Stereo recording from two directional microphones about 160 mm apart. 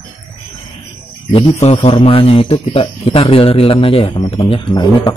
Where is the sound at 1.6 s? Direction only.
40° left (ahead or behind).